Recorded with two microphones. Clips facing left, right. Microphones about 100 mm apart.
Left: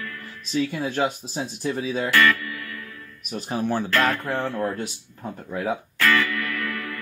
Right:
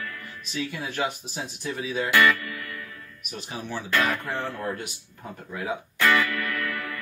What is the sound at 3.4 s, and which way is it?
Speech, 50° left (ahead or behind).